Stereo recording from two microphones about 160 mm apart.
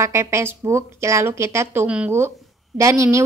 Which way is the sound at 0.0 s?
20° right (ahead or behind).